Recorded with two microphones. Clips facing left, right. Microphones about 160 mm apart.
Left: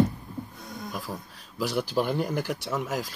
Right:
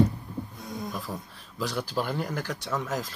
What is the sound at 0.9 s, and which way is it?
Speech, 5° left (ahead or behind).